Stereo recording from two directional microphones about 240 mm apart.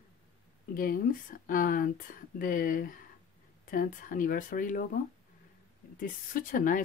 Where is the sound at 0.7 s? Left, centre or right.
Left.